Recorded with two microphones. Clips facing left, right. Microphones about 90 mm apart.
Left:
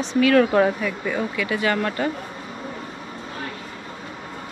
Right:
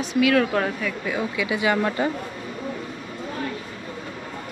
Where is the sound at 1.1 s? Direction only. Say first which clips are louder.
Left 1 dB; 15° right (ahead or behind).